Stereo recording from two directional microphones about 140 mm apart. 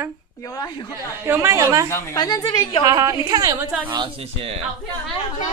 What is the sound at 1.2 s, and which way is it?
Speech, 15° right (ahead or behind).